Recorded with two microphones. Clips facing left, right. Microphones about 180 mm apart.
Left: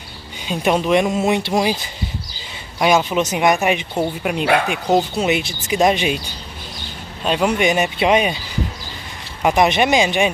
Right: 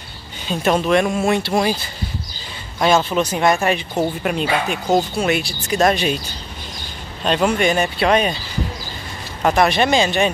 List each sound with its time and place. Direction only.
0.5 s speech: 15° left (ahead or behind)
4.9 s speech: 20° left (ahead or behind)
7.2 s speech: 10° left (ahead or behind)
9.4 s speech: 15° left (ahead or behind)